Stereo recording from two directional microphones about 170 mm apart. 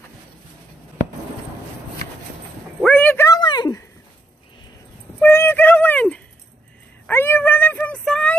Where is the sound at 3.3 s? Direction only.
25° left (ahead or behind).